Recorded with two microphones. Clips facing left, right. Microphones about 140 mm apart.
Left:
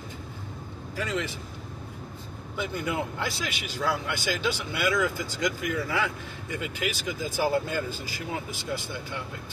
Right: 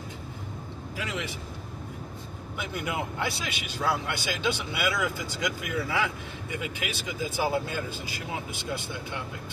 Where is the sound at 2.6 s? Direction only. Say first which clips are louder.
Left 2 dB; 15° right (ahead or behind).